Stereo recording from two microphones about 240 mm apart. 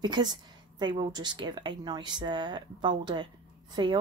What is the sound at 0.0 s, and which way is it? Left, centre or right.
Speech, centre.